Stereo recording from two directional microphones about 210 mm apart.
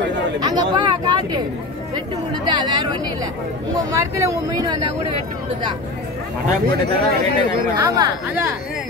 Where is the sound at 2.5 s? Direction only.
20° right (ahead or behind).